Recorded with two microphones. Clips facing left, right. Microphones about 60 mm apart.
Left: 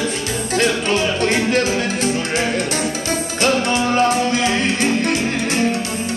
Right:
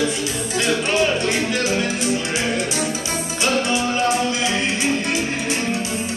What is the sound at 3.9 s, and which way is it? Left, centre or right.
Music, left.